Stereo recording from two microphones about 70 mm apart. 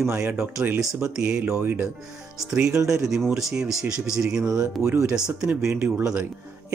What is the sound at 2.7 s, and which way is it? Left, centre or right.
Speech, right.